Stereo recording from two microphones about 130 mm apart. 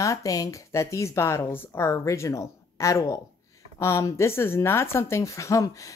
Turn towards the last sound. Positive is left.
turn(degrees=25)  # may be behind; listen again after turning